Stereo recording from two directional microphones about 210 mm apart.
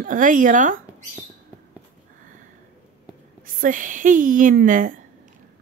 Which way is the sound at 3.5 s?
40° right (ahead or behind).